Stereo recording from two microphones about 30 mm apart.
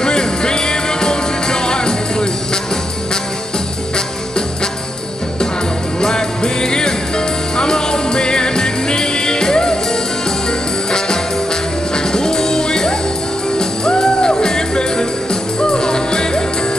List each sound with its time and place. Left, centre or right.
0.0 s music: left
5.9 s music: left
12.1 s music: left